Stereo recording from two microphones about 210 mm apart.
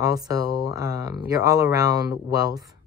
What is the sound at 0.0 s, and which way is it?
Speech, 15° right (ahead or behind).